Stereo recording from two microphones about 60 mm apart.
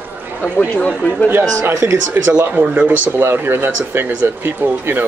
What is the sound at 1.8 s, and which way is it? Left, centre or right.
Speech, right.